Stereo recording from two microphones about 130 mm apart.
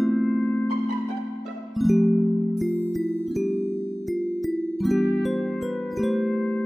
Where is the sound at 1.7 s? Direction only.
Centre (ahead or behind).